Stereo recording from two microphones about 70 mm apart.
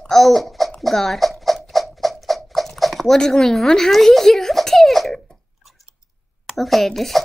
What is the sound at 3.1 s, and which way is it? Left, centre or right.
Speech, centre.